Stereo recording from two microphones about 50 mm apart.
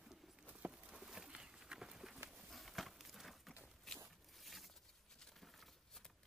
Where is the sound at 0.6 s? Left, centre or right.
Right.